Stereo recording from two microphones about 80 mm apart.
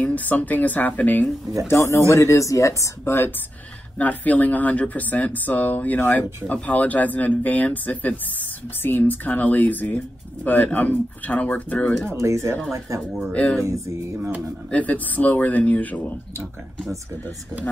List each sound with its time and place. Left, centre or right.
0.0 s speech: left
1.7 s speech: left
4.0 s speech: centre
12.1 s speech: right
13.3 s speech: centre
14.7 s speech: centre